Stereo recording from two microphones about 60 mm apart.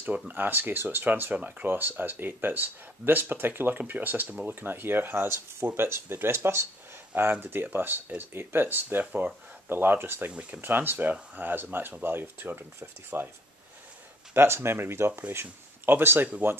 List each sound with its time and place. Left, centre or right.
0.0 s speech: right
7.1 s speech: right
9.0 s speech: right
9.7 s speech: right
14.3 s speech: right